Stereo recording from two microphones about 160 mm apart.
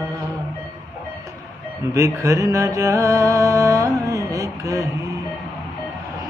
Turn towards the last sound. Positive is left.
turn(degrees=-20)  # may be behind; listen again after turning